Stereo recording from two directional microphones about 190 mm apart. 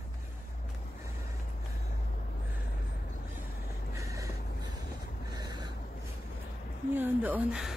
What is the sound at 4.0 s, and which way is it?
Vehicle, 15° right (ahead or behind).